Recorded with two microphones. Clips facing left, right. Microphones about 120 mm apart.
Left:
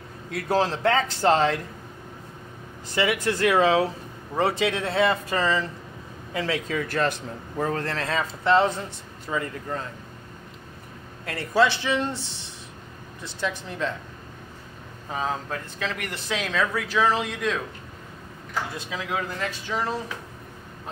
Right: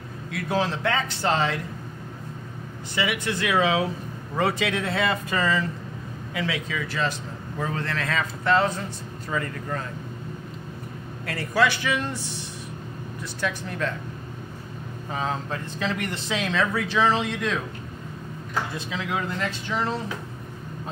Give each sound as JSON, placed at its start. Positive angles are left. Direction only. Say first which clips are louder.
{"t": 0.3, "sound": "a man's voice", "louder": "left 2 dB", "side_deg": 35}
{"t": 2.9, "sound": "a man's voice", "louder": "left 3 dB", "side_deg": 40}
{"t": 4.4, "sound": "speech", "louder": "left 1 dB", "side_deg": 25}
{"t": 7.5, "sound": "a man's voice", "louder": "left 2 dB", "side_deg": 40}
{"t": 8.2, "sound": "speech", "louder": "left 2 dB", "side_deg": 25}
{"t": 11.2, "sound": "speech", "louder": "left 1 dB", "side_deg": 25}
{"t": 15.0, "sound": "speech", "louder": "even", "side_deg": 10}
{"t": 15.5, "sound": "speech", "louder": "right 2 dB", "side_deg": 0}